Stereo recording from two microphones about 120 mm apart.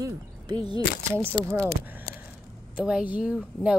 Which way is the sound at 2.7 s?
10° right (ahead or behind).